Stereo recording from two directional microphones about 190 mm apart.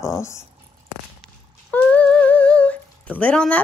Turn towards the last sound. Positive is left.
turn(degrees=5)  # may be behind; listen again after turning